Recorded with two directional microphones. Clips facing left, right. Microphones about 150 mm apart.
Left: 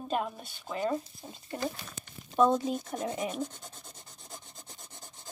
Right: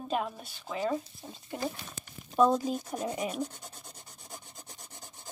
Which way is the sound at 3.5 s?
10° right (ahead or behind).